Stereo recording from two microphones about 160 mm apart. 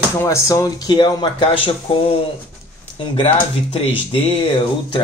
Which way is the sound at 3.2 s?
35° left (ahead or behind).